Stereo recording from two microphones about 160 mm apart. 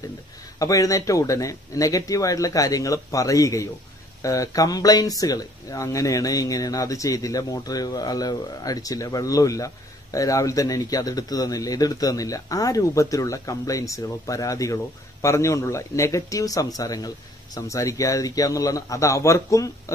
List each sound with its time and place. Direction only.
0.6 s speech: 20° left (ahead or behind)